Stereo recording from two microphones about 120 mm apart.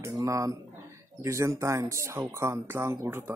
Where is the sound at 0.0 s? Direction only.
25° right (ahead or behind).